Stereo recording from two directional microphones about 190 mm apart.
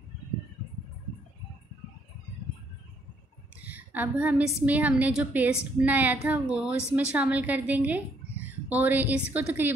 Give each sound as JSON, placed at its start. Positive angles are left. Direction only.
{"t": 3.6, "sound": "a woman's voice", "side_deg": -10}